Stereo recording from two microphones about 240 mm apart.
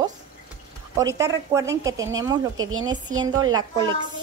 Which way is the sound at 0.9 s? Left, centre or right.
Centre.